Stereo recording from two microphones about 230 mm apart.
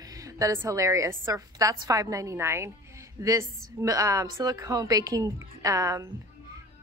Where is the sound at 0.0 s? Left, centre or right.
Centre.